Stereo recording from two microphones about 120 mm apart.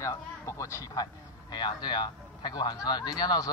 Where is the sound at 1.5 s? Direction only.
40° left (ahead or behind).